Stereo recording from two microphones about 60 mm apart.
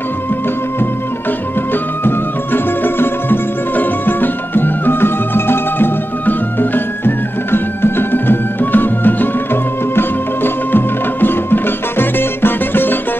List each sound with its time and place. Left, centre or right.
2.0 s music: left